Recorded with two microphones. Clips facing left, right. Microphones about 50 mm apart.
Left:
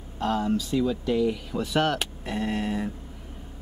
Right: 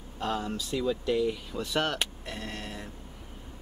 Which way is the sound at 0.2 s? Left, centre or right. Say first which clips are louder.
Left 6 dB; centre.